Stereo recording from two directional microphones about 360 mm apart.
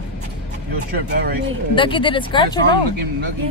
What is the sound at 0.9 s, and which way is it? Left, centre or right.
Speech, right.